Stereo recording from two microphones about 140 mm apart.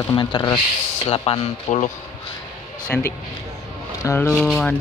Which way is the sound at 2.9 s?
10° left (ahead or behind).